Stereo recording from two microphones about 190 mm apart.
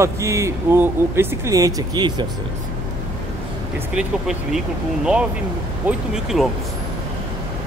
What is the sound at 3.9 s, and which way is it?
Speech, centre (ahead or behind).